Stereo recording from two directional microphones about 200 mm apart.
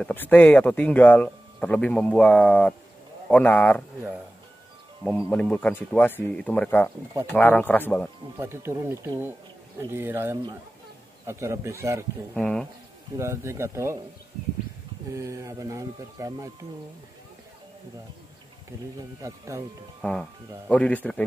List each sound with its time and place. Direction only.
0.0 s speech: 10° left (ahead or behind)
5.0 s speech: 10° left (ahead or behind)
8.4 s speech: 15° right (ahead or behind)
12.4 s speech: 5° left (ahead or behind)
13.2 s speech: 15° right (ahead or behind)
15.1 s speech: 15° right (ahead or behind)
19.2 s speech: 15° right (ahead or behind)
20.0 s speech: 5° left (ahead or behind)